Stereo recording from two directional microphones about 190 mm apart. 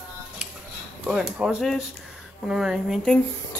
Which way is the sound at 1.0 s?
Centre (ahead or behind).